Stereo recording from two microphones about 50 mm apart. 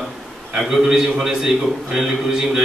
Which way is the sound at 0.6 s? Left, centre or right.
Centre.